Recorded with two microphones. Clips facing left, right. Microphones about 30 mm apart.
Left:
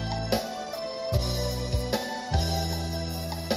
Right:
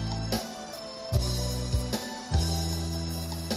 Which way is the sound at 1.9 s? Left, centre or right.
Centre.